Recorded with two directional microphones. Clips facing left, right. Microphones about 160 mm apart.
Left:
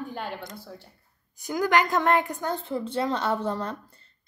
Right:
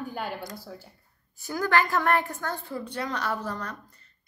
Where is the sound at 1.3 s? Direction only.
15° left (ahead or behind).